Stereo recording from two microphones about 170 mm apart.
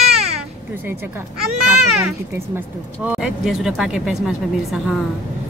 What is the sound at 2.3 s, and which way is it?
Speech, 10° right (ahead or behind).